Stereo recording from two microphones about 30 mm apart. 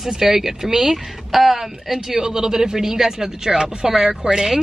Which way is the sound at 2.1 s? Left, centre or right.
Right.